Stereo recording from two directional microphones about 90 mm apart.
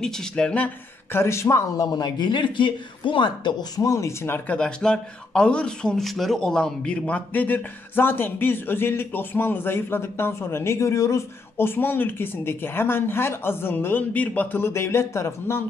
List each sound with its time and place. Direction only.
0.0 s speech: 5° left (ahead or behind)
1.1 s speech: 30° left (ahead or behind)
1.9 s speech: 50° left (ahead or behind)
3.8 s speech: 35° left (ahead or behind)
4.6 s speech: 10° left (ahead or behind); by 15.6 s 30° left (ahead or behind)